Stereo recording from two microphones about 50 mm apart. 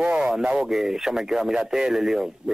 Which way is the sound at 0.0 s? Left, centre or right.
Right.